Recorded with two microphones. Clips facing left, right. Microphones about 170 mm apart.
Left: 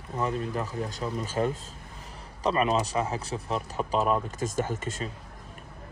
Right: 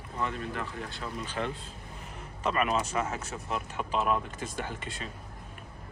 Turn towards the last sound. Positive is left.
turn(degrees=45)  # may be behind; listen again after turning